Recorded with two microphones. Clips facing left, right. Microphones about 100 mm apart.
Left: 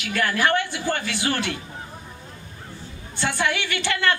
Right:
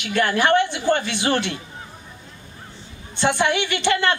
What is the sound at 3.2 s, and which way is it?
A woman's voice, 20° right (ahead or behind).